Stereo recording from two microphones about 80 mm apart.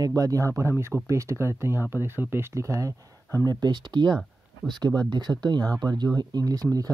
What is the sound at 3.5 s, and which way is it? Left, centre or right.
Speech, right.